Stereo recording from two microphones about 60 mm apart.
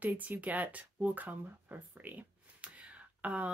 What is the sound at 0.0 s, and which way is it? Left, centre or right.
Speech, right.